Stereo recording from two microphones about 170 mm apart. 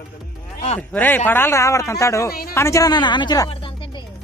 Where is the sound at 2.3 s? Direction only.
60° left (ahead or behind).